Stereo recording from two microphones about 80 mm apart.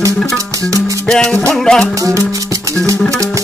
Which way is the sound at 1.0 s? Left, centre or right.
Centre.